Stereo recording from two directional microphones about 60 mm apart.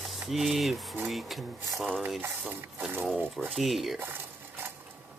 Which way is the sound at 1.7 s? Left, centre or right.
Centre.